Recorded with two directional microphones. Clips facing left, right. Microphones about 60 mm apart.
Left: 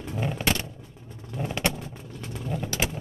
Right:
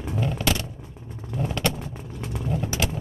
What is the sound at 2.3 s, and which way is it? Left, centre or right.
Vehicle, centre.